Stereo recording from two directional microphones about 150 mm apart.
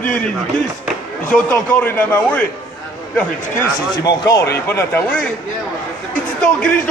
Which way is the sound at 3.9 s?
25° left (ahead or behind).